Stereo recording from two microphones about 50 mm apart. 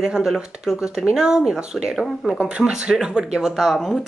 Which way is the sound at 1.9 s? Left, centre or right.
Centre.